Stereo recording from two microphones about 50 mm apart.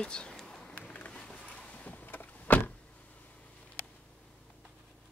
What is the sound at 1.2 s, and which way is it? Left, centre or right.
Power windows, centre.